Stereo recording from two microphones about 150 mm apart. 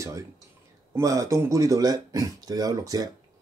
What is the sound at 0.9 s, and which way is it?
Speech, 20° right (ahead or behind).